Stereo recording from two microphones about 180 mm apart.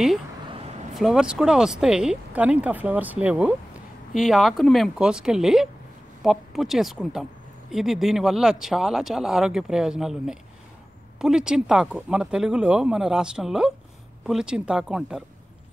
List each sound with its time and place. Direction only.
0.5 s vehicle: 35° right (ahead or behind)
0.9 s speech: 5° right (ahead or behind)